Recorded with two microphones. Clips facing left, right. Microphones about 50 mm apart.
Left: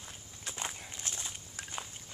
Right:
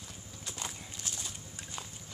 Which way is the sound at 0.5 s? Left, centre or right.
Left.